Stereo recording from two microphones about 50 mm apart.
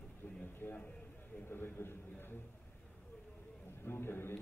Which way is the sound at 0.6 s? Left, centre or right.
Left.